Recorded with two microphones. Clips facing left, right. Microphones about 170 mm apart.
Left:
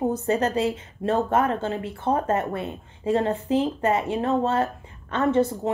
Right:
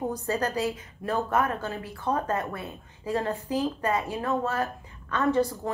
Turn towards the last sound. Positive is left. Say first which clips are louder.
# left 3 dB
turn(degrees=20)  # may be behind; listen again after turning